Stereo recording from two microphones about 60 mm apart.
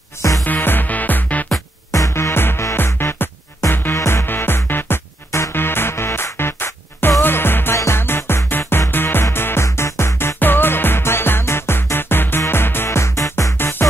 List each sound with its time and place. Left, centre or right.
0.4 s music: left
1.9 s music: left
2.1 s music: left
13.6 s music: left